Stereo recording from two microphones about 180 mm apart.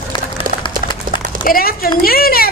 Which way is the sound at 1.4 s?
55° left (ahead or behind).